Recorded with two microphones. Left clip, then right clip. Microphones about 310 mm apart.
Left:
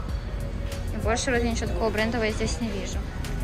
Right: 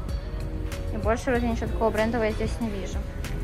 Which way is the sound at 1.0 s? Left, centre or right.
Centre.